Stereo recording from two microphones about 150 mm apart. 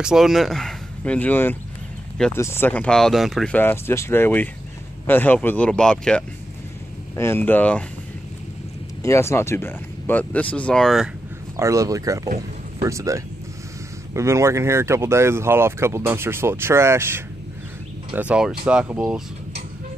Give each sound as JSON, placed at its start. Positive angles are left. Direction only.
{"t": 0.0, "sound": "speech", "side_deg": 0}
{"t": 3.5, "sound": "speech", "side_deg": 15}
{"t": 9.0, "sound": "speech", "side_deg": 20}
{"t": 11.5, "sound": "speech", "side_deg": -20}